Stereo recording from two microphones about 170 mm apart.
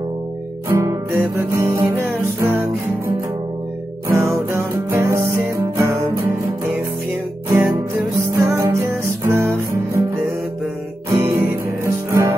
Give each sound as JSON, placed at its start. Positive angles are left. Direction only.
{"t": 0.7, "sound": "music", "side_deg": -20}
{"t": 4.1, "sound": "music", "side_deg": -15}